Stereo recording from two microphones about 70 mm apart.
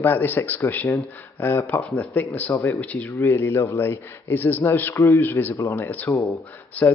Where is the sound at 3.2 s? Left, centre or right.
Left.